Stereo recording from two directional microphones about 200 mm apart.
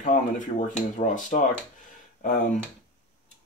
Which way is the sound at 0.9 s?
35° left (ahead or behind).